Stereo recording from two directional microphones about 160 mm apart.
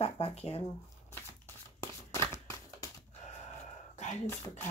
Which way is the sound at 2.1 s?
20° left (ahead or behind).